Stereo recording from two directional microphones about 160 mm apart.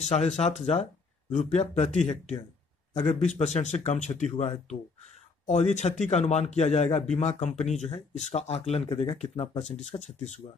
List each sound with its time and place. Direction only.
0.1 s a man's voice: 45° left (ahead or behind)
3.0 s a man's voice: 45° left (ahead or behind)